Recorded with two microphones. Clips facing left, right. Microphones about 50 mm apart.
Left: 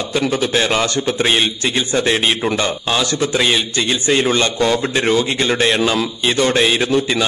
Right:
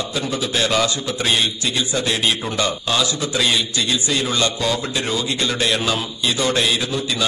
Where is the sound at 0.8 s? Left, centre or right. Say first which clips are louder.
Left 4 dB; left.